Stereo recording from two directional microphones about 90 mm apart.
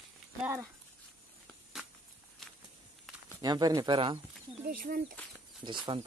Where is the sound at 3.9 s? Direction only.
70° right (ahead or behind).